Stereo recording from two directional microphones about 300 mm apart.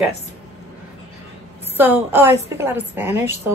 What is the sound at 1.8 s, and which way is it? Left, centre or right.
A woman's voice, centre.